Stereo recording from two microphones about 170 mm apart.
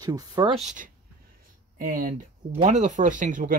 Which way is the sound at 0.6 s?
45° right (ahead or behind).